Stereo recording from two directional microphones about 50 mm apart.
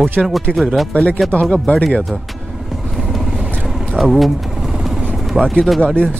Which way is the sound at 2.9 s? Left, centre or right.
Centre.